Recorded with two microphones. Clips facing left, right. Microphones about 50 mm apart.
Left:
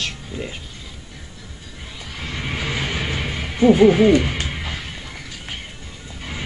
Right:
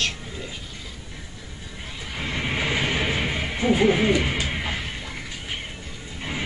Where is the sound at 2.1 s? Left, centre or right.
Centre.